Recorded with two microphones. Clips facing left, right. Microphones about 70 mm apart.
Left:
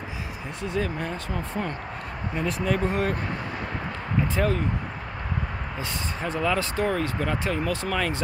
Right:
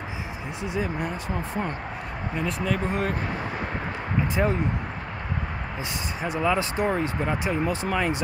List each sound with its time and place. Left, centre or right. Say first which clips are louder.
0.7 s speech: even; centre
2.3 s speech: left 1 dB; centre
4.4 s speech: right 1 dB; right
6.2 s speech: right 1 dB; centre